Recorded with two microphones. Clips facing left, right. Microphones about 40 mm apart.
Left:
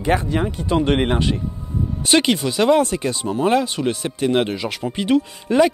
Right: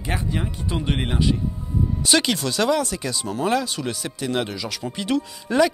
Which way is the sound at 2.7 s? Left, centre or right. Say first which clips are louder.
Left 6 dB; left.